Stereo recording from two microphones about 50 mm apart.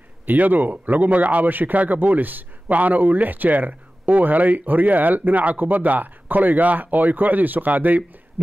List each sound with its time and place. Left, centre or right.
0.3 s speech: right